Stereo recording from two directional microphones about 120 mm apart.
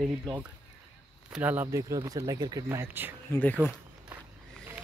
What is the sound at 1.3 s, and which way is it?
Speech, 15° right (ahead or behind).